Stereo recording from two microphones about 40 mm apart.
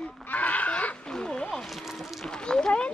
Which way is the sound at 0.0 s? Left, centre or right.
Left.